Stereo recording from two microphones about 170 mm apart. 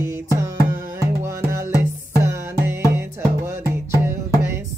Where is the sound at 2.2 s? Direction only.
15° right (ahead or behind).